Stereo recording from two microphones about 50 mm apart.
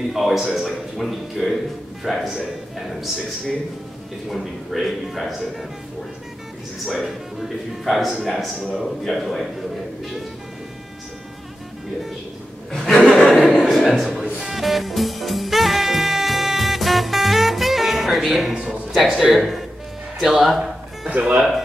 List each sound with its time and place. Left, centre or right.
0.1 s a man's voice: centre
4.3 s a man's voice: centre
6.9 s a man's voice: centre
12.7 s a sound: centre
13.4 s chuckle: centre
14.2 s music: centre
14.6 s music: centre
18.5 s speech: right
18.9 s a man's voice: centre
20.2 s music: centre
21.2 s speech: centre